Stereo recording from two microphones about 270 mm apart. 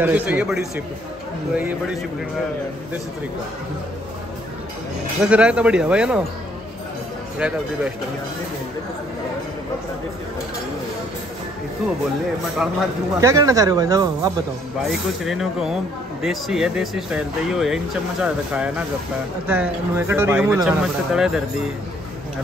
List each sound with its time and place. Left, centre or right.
0.0 s speech: centre
5.2 s speech: centre
7.3 s speech: centre
12.6 s speech: centre
14.9 s speech: centre